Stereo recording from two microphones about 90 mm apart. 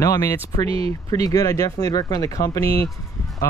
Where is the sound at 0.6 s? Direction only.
90° right.